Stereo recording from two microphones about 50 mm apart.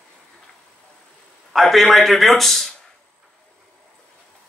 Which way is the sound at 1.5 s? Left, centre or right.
Centre.